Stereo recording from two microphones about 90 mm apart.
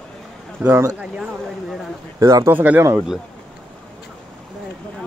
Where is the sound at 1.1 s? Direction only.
5° right (ahead or behind).